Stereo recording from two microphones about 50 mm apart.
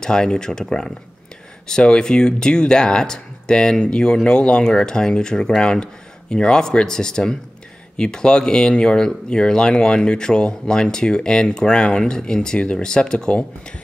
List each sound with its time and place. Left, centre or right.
0.0 s speech: centre